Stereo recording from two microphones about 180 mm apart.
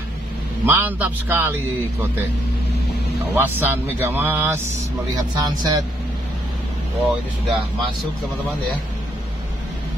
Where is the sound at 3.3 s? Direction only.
10° right (ahead or behind).